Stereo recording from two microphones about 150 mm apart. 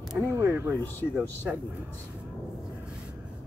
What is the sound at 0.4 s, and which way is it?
Speech, 15° right (ahead or behind).